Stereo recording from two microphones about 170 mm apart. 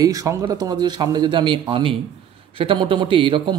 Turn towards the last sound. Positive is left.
turn(degrees=-30)  # may be behind; listen again after turning